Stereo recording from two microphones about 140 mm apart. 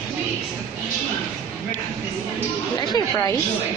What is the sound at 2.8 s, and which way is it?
Chatter, 30° left (ahead or behind).